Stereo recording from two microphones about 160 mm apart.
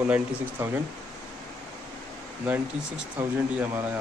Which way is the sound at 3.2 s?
15° right (ahead or behind).